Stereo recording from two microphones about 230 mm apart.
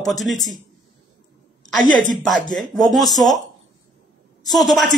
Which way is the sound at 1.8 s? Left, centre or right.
Right.